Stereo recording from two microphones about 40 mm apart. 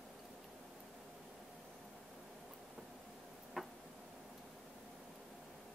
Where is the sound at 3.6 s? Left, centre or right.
Centre.